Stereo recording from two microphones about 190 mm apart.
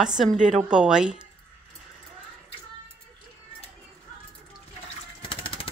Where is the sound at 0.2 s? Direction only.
Centre (ahead or behind).